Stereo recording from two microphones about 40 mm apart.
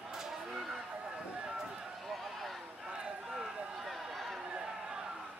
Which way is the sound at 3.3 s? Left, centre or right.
Centre.